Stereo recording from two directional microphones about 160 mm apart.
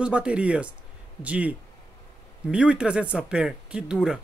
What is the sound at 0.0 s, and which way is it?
Speech, 5° right (ahead or behind).